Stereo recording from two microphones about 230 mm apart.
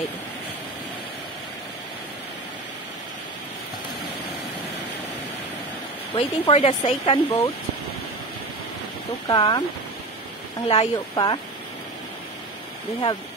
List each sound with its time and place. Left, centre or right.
6.1 s speech: left
9.3 s speech: centre
10.7 s speech: left